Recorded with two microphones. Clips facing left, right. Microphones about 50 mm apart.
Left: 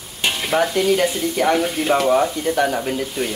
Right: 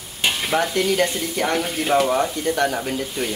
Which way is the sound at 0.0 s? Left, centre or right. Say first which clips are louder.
Even; centre.